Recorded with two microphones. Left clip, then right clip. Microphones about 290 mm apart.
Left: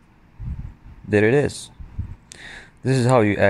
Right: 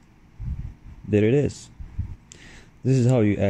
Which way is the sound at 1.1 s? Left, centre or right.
Left.